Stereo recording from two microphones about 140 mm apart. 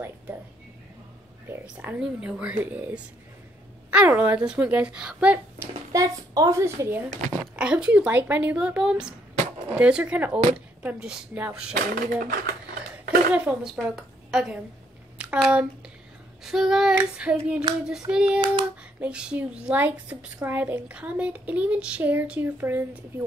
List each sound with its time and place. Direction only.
1.5 s a woman's voice: 15° right (ahead or behind)
5.9 s a child's voice: 25° right (ahead or behind)
7.5 s a woman's voice: 5° right (ahead or behind)
11.7 s speech: 85° right
13.3 s a woman's voice: 10° right (ahead or behind)
15.1 s a sound: 5° right (ahead or behind)
16.9 s a woman's voice: 10° right (ahead or behind)